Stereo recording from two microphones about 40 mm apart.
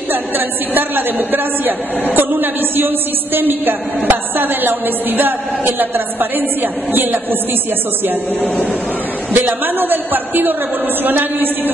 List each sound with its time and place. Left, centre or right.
0.7 s a woman's voice: right
9.3 s a woman's voice: right